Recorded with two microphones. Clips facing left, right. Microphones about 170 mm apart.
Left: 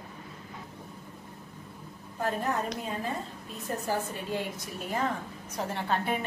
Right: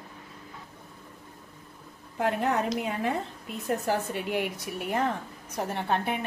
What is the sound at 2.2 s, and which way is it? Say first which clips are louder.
Speech: right 4 dB; 75° right (ahead or behind).